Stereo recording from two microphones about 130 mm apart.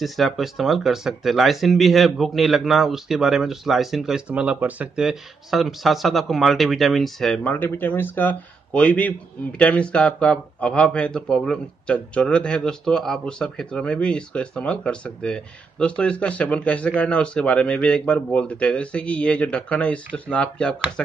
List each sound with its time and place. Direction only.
0.0 s speech: centre (ahead or behind)
7.5 s speech: 15° left (ahead or behind)